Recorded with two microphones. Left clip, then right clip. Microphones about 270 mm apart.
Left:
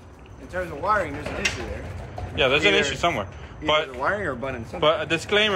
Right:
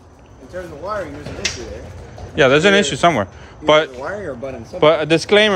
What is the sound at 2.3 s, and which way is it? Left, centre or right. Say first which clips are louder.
Speech: right 7 dB; right.